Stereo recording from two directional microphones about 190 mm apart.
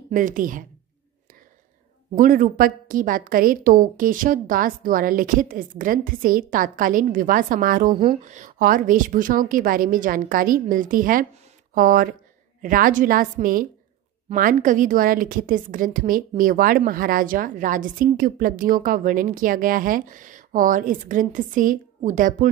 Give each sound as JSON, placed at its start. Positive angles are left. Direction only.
{"t": 0.1, "sound": "a woman's voice", "side_deg": -45}
{"t": 2.1, "sound": "a woman's voice", "side_deg": -45}